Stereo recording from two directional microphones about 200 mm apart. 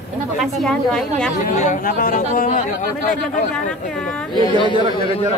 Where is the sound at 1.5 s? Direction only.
40° left (ahead or behind).